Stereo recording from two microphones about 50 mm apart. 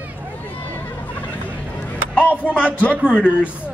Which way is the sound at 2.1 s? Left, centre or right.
Left.